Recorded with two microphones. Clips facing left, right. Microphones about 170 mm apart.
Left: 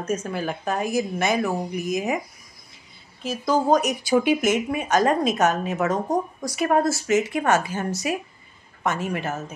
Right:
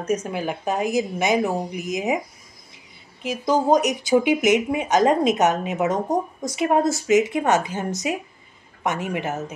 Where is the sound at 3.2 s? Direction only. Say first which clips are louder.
Right 1 dB; 20° right (ahead or behind).